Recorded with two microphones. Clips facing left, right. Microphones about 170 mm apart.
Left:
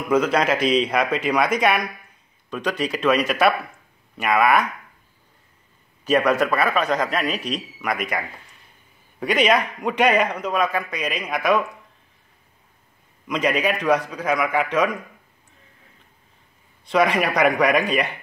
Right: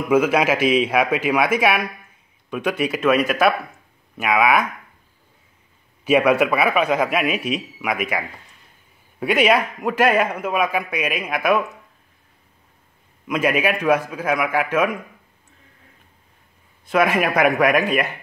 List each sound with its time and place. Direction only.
0.1 s a man's voice: 10° right (ahead or behind)
6.0 s a man's voice: 10° right (ahead or behind)
13.3 s a man's voice: 5° right (ahead or behind)
16.9 s a man's voice: 5° right (ahead or behind)